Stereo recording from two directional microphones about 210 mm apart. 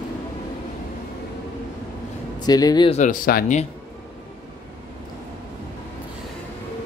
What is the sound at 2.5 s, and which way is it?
Speech, 20° left (ahead or behind).